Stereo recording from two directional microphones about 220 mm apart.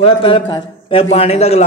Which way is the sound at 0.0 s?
25° left (ahead or behind).